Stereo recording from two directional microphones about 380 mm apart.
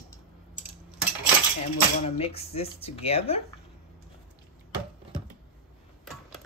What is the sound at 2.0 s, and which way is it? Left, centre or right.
Speech, centre.